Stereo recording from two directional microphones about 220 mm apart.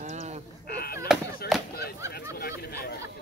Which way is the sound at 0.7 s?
45° left (ahead or behind).